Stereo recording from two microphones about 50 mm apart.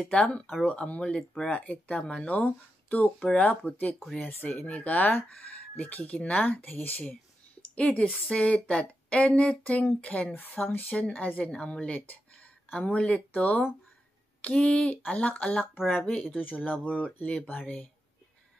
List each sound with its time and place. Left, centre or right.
0.1 s speech: left
7.7 s a woman's voice: left
10.9 s speech: left
11.5 s speech: left
12.1 s a sound: left
12.8 s speech: left